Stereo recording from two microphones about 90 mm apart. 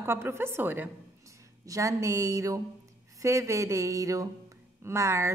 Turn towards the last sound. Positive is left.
turn(degrees=-30)  # may be behind; listen again after turning